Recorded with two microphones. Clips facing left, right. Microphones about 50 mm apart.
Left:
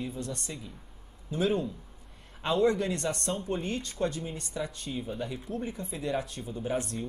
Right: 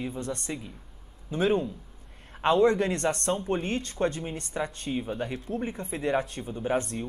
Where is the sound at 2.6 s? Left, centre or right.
Right.